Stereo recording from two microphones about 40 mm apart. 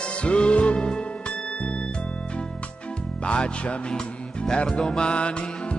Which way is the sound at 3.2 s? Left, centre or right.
Left.